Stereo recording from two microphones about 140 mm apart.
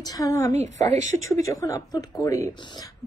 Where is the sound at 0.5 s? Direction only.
55° right (ahead or behind).